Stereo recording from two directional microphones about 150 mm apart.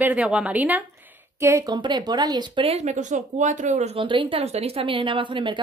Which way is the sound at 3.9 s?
35° right (ahead or behind).